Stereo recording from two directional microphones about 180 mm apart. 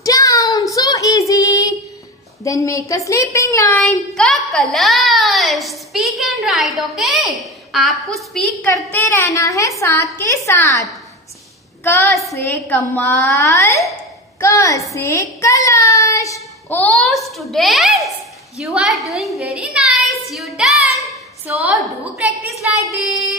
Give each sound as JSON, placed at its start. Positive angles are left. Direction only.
{"t": 0.0, "sound": "child singing", "side_deg": 20}
{"t": 2.4, "sound": "a child's voice", "side_deg": 15}
{"t": 8.9, "sound": "a woman's voice", "side_deg": 15}
{"t": 15.0, "sound": "child singing", "side_deg": 15}
{"t": 16.7, "sound": "a child's voice", "side_deg": 0}
{"t": 22.6, "sound": "child singing", "side_deg": -10}